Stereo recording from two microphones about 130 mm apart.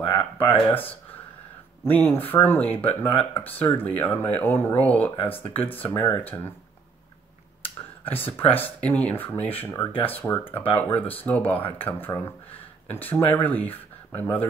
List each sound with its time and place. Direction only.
0.1 s speech: 15° left (ahead or behind)
8.2 s speech: 15° left (ahead or behind)